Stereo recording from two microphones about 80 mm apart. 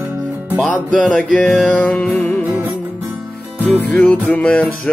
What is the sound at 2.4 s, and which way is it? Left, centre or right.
Music, right.